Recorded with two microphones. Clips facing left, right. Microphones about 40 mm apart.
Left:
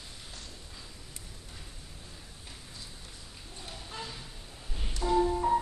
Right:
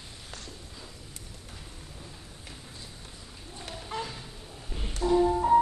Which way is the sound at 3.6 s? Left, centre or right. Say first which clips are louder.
Right 6 dB; right.